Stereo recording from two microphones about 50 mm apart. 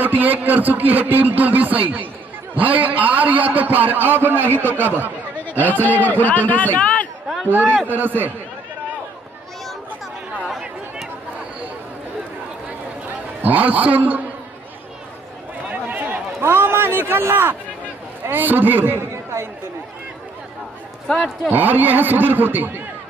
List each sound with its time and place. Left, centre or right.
0.0 s a man's voice: right
5.4 s a sound: left
5.9 s a man's voice: left
7.4 s a man's voice: right
13.4 s a man's voice: right
15.7 s a sound: right
18.3 s a man's voice: right
21.5 s a man's voice: right